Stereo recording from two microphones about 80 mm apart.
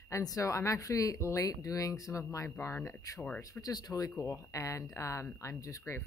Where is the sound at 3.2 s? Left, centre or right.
Centre.